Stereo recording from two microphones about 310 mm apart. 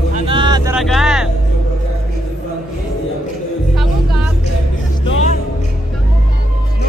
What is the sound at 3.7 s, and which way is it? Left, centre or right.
Music, centre.